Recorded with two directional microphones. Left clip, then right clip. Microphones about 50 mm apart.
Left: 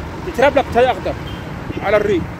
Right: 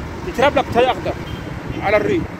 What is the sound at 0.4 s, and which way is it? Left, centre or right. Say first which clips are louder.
Speech: left 2 dB; left.